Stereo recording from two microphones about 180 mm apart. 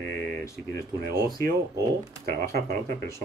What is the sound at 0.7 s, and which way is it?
Speech, 60° right (ahead or behind).